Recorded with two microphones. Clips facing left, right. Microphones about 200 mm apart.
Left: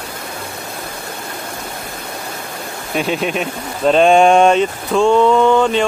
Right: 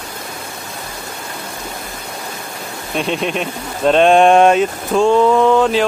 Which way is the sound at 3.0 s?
5° left (ahead or behind).